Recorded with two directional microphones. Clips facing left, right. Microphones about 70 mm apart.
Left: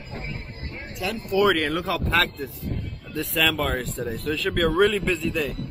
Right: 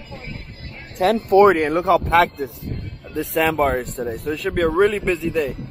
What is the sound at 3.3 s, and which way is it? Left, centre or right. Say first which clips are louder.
Speech: right 6 dB; right.